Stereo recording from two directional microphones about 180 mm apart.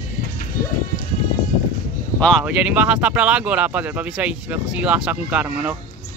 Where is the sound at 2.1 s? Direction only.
5° left (ahead or behind).